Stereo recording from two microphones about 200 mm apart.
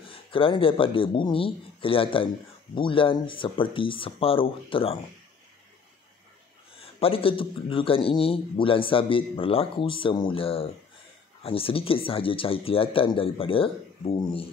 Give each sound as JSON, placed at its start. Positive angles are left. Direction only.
{"t": 0.0, "sound": "a man's voice", "side_deg": 25}
{"t": 7.0, "sound": "a man's voice", "side_deg": 30}